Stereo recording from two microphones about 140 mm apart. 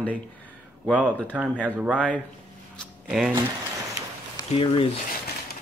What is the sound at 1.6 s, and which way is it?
Speech, 5° right (ahead or behind).